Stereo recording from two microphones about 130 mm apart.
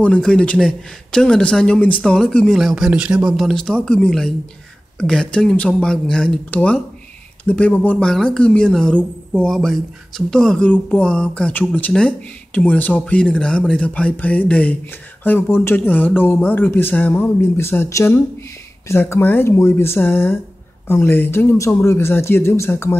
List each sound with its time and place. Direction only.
0.0 s a man's voice: 5° left (ahead or behind)